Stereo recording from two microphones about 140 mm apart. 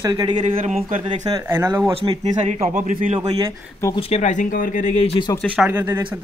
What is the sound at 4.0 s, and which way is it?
Speech, 50° left (ahead or behind).